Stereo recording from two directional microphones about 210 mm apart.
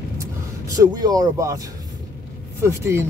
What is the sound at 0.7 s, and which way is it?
Speech, 20° right (ahead or behind).